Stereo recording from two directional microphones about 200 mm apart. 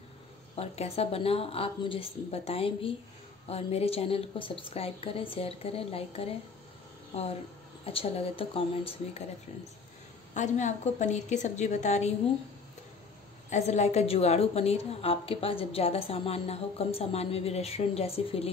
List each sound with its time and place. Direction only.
0.6 s a woman's voice: 30° left (ahead or behind)
7.8 s a woman's voice: 30° left (ahead or behind)
10.3 s a woman's voice: 35° left (ahead or behind)
13.5 s a woman's voice: 35° left (ahead or behind)